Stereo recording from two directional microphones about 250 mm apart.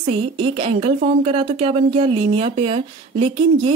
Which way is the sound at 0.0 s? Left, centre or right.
Right.